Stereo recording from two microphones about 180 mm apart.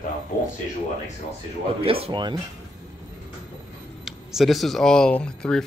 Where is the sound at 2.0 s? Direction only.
25° right (ahead or behind).